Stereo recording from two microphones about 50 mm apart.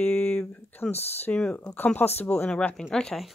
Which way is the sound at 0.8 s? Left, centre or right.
Left.